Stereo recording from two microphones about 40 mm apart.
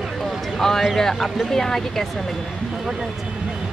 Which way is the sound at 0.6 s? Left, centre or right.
Centre.